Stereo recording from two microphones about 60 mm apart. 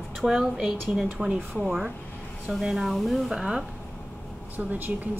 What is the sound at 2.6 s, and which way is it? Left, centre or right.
A woman's voice, centre.